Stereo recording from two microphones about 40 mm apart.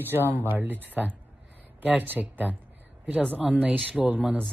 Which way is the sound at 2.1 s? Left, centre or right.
Right.